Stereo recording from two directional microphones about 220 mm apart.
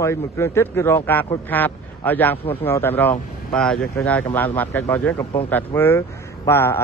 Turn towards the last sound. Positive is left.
turn(degrees=10)  # may be behind; listen again after turning